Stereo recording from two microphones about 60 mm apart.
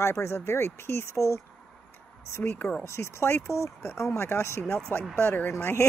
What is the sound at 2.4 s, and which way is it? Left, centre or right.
Speech, left.